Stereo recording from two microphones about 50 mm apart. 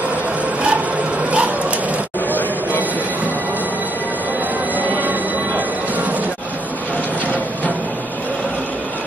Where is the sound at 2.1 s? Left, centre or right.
Left.